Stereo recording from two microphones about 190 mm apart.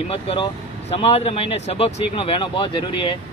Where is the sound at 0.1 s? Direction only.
30° left (ahead or behind).